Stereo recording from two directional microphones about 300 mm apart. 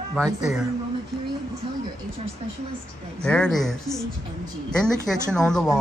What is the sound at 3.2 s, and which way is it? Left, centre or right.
Speech, centre.